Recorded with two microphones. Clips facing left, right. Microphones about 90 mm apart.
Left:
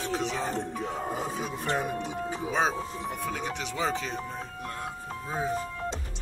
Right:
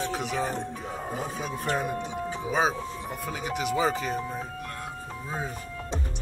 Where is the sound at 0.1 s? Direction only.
5° right (ahead or behind).